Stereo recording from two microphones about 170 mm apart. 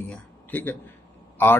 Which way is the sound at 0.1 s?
10° left (ahead or behind).